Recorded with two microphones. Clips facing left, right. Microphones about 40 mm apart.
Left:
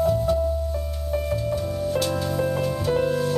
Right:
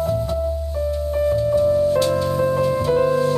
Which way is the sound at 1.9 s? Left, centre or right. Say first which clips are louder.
Right 6 dB; right.